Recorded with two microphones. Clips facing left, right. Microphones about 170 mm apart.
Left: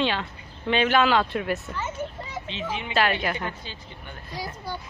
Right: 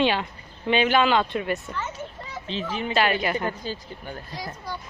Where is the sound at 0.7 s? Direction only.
Centre (ahead or behind).